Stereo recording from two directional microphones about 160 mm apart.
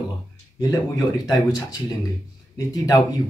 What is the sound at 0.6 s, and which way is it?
Speech, 20° left (ahead or behind).